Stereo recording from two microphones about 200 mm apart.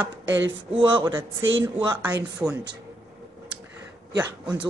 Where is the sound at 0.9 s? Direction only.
15° right (ahead or behind).